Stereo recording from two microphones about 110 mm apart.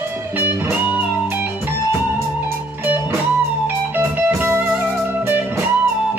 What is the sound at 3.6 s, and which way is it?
Music, 20° right (ahead or behind).